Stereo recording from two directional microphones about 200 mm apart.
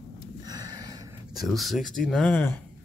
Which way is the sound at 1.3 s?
Centre (ahead or behind).